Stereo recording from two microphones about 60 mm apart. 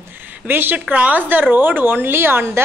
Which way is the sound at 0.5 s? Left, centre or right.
Right.